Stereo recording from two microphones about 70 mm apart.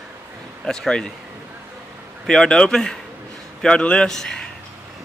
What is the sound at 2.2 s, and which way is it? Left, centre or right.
Speech, centre.